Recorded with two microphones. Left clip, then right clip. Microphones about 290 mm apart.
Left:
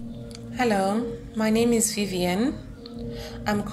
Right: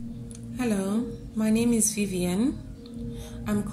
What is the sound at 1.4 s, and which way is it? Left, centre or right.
Speech, centre.